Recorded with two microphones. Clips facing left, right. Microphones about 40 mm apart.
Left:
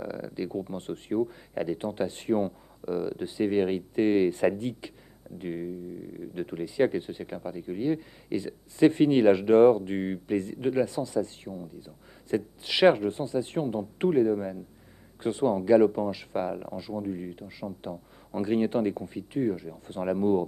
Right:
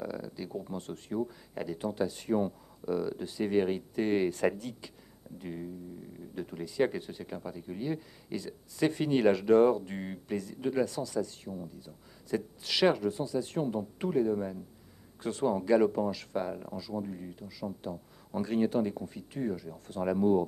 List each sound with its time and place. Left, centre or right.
0.0 s a sound: centre
0.6 s speech: left
5.4 s speech: left
6.6 s speech: centre
17.2 s speech: left